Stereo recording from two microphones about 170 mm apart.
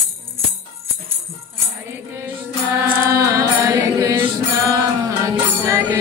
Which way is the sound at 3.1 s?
20° right (ahead or behind).